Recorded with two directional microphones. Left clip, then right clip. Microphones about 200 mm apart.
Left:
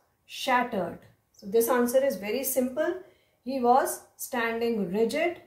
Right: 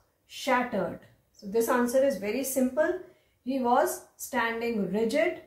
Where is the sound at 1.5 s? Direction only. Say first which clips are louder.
Left 2 dB; 50° left (ahead or behind).